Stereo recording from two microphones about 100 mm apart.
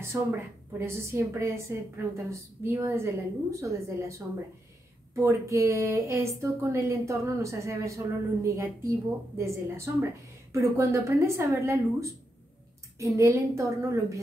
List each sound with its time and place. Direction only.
0.1 s a woman's voice: 25° right (ahead or behind)